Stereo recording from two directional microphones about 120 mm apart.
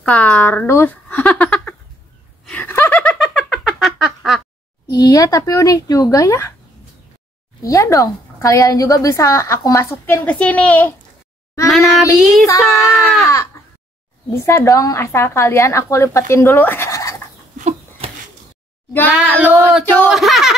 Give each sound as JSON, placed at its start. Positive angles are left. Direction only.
{"t": 0.0, "sound": "speech", "side_deg": 10}
{"t": 1.2, "sound": "a sound", "side_deg": 5}
{"t": 4.8, "sound": "a woman's voice", "side_deg": 30}
{"t": 7.6, "sound": "a woman's voice", "side_deg": 25}
{"t": 11.7, "sound": "child singing", "side_deg": 0}
{"t": 12.5, "sound": "a child's voice", "side_deg": 0}
{"t": 14.3, "sound": "a woman's voice", "side_deg": 20}
{"t": 19.1, "sound": "speech", "side_deg": -10}
{"t": 19.8, "sound": "speech", "side_deg": 15}
{"t": 20.1, "sound": "a sound", "side_deg": 0}